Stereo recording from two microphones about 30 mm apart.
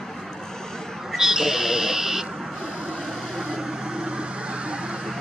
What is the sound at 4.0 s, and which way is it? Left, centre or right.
Vehicle, right.